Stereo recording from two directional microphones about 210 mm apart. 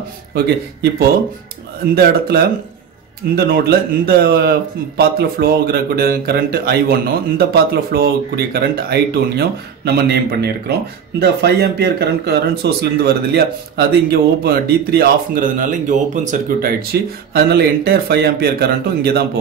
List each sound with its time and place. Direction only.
2.0 s speech: 50° right (ahead or behind)
16.9 s speech: 50° right (ahead or behind)